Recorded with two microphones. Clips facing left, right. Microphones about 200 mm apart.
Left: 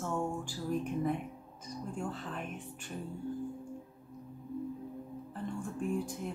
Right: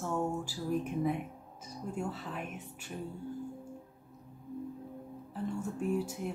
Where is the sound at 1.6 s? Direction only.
5° right (ahead or behind).